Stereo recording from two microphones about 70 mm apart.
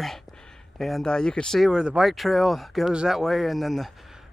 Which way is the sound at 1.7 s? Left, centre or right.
Centre.